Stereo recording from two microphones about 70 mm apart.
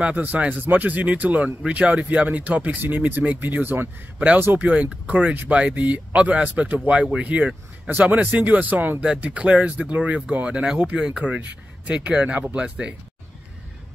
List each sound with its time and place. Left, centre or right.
0.0 s speech: right
4.6 s speech: centre